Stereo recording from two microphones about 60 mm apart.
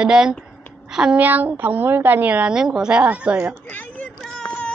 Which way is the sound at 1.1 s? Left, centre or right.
Right.